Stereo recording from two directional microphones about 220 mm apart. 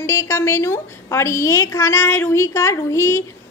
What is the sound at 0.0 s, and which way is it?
A woman's voice, 15° left (ahead or behind).